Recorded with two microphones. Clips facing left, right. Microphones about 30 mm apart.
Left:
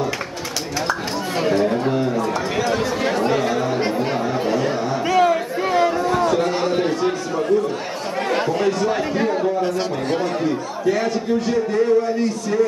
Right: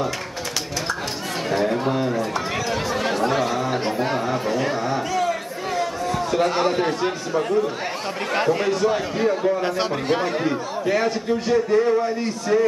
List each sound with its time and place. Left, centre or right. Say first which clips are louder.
1.5 s chatter: left 1 dB; centre
4.0 s chatter: left 2 dB; centre
6.4 s a sound: even; centre
8.3 s speech: left 1 dB; centre
10.1 s speech: left 2 dB; centre